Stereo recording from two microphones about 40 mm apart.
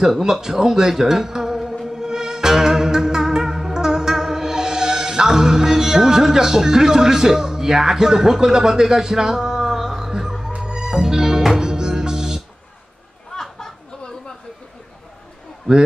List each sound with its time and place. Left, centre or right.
0.0 s a man's voice: centre
1.9 s music: centre
13.3 s chatter: centre
15.7 s a man's voice: centre